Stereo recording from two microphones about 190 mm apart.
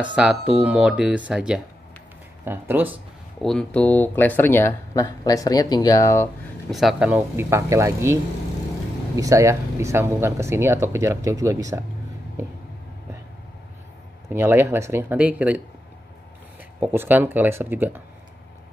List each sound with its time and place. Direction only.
0.1 s speech: 5° right (ahead or behind)
3.4 s speech: 5° left (ahead or behind)
6.7 s speech: centre (ahead or behind); by 11.8 s 15° right (ahead or behind)
14.3 s speech: 10° right (ahead or behind)
16.8 s speech: 10° right (ahead or behind)